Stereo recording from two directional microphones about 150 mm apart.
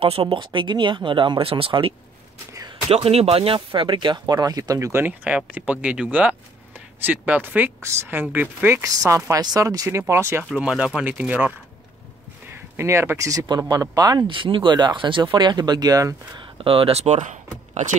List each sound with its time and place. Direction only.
0.0 s speech: 40° right (ahead or behind); by 8.8 s 10° right (ahead or behind)
8.8 s speech: 25° right (ahead or behind)
10.5 s speech: 5° right (ahead or behind); by 16.4 s 25° right (ahead or behind)
16.5 s speech: 40° right (ahead or behind)